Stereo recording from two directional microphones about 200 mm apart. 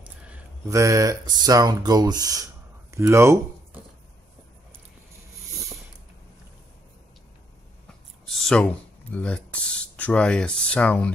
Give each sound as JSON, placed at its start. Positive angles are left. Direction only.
{"t": 0.7, "sound": "speech", "side_deg": -15}
{"t": 2.9, "sound": "a sound", "side_deg": -15}
{"t": 8.3, "sound": "speech", "side_deg": 5}